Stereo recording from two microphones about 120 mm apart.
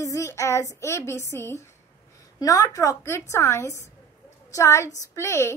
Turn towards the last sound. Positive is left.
turn(degrees=25)  # may be behind; listen again after turning